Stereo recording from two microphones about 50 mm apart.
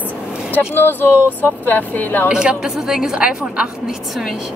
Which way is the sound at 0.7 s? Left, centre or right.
Left.